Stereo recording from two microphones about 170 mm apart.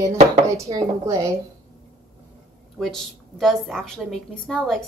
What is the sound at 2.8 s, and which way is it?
A woman's voice, centre (ahead or behind).